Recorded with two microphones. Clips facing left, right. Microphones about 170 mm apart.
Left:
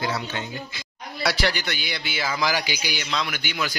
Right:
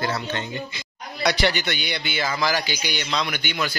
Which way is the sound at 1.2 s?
Centre (ahead or behind).